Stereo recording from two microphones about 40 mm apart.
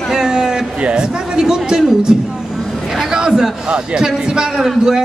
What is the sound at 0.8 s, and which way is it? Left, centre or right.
A man's voice, right.